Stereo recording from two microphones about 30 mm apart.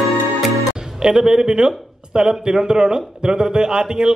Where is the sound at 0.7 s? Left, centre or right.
Right.